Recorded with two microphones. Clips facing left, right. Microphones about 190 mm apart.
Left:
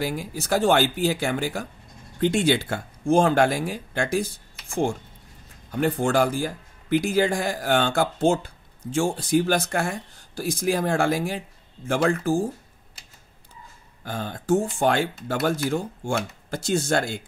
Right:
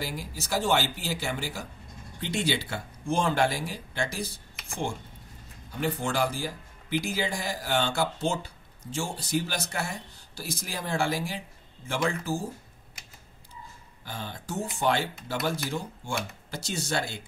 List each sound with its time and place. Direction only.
0.0 s speech: 50° left (ahead or behind)
5.7 s speech: 55° left (ahead or behind)
14.0 s speech: 50° left (ahead or behind)